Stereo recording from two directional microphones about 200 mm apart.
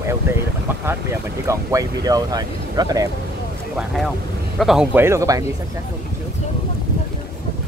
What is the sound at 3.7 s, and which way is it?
Speech, centre (ahead or behind).